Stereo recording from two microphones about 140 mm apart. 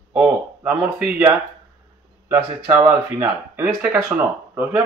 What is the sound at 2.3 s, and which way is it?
Speech, 15° right (ahead or behind).